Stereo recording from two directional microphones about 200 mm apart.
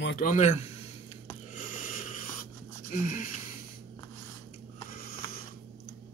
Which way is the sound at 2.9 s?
40° left (ahead or behind).